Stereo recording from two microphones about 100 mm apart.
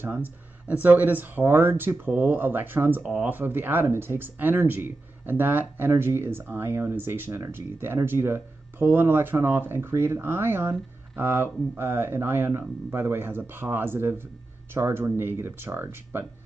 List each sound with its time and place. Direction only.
0.0 s speech: 20° right (ahead or behind)